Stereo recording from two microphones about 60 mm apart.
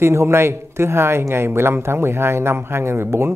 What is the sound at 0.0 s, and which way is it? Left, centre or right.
Speech, right.